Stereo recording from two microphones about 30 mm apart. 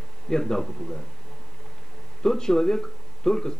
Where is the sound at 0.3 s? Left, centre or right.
Centre.